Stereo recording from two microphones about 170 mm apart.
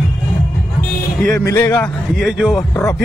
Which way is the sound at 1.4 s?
15° left (ahead or behind).